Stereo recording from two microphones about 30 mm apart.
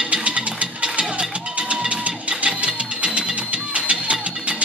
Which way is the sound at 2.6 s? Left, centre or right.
Right.